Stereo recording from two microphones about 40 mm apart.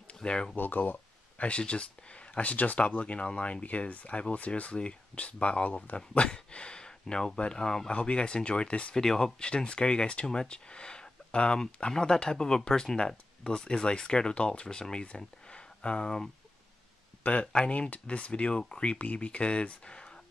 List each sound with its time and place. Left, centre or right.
0.1 s speech: left
0.6 s speech: left
1.4 s speech: left
5.1 s speech: left
5.9 s speech: left
8.9 s speech: centre
17.2 s speech: left